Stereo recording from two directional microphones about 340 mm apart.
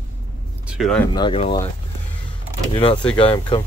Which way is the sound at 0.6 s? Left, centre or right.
Centre.